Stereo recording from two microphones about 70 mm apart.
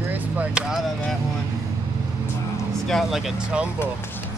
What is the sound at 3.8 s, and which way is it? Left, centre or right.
Speech, left.